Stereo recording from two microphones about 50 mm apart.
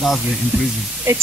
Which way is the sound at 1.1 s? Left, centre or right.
Right.